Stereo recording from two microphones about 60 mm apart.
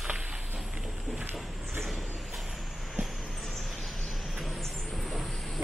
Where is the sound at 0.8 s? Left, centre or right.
Centre.